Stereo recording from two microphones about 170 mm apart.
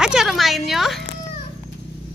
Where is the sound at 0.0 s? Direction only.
Centre (ahead or behind).